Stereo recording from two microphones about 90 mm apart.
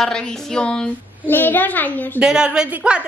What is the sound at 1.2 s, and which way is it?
Speech, 20° left (ahead or behind).